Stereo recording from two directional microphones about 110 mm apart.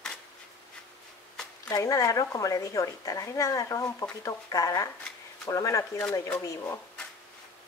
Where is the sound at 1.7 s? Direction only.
30° left (ahead or behind).